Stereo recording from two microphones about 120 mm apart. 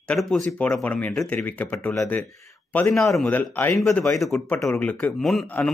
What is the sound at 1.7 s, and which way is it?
Speech, 25° left (ahead or behind).